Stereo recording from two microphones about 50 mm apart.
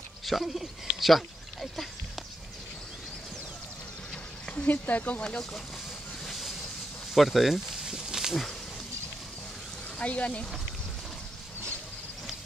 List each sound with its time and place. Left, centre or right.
0.2 s speech: centre
0.9 s a sound: centre
4.6 s speech: left
6.2 s vehicle: centre
7.2 s speech: centre
7.9 s a sound: centre
9.9 s speech: left